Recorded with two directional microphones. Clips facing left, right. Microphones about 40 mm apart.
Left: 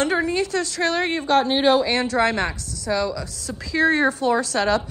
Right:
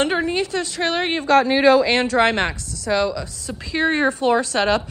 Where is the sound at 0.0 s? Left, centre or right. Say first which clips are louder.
Right 1 dB; right.